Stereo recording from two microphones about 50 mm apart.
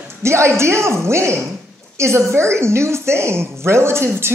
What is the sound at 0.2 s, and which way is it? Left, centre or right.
A woman's voice, right.